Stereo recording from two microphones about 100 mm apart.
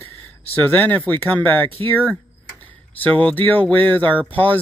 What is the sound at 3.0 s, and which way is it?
Speech, 15° left (ahead or behind).